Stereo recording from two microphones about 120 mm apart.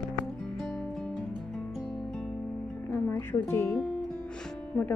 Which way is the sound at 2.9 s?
20° left (ahead or behind).